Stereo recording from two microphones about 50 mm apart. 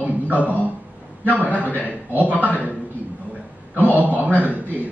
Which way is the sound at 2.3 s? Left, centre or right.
Left.